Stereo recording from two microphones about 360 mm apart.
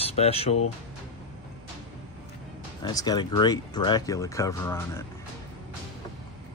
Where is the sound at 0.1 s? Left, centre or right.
Centre.